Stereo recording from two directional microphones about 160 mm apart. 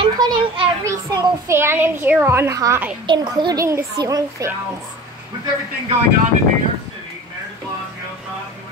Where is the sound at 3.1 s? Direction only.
25° right (ahead or behind).